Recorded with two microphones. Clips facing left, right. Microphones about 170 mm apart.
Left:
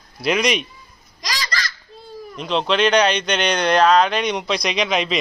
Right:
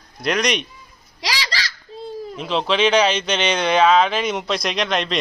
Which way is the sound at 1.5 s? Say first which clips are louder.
Even; 90° right.